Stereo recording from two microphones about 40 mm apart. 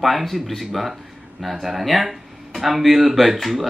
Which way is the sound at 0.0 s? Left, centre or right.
Centre.